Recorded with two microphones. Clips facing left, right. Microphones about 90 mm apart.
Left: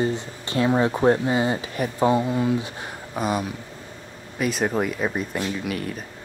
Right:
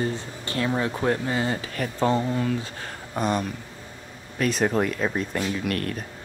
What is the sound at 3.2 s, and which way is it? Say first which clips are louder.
Speech: even; 5° left (ahead or behind).